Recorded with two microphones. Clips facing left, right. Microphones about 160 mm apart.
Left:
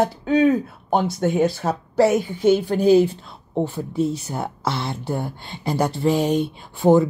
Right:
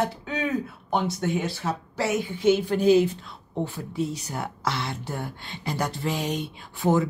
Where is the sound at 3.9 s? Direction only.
50° left (ahead or behind).